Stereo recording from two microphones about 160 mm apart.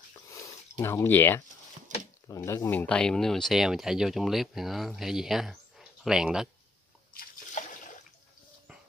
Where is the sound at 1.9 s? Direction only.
50° right (ahead or behind).